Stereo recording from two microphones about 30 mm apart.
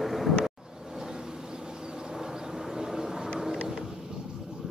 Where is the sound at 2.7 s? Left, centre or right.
Centre.